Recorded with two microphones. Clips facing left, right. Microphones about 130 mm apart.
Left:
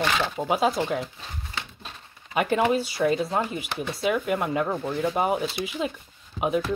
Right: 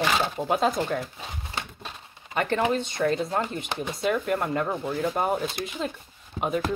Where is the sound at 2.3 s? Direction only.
10° left (ahead or behind).